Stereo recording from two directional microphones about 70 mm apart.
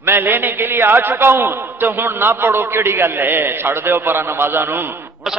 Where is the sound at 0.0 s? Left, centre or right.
Right.